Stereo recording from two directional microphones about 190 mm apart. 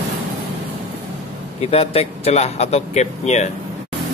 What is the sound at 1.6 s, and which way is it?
Speech, 30° left (ahead or behind).